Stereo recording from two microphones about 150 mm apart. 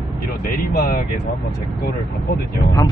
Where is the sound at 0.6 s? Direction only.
75° left (ahead or behind).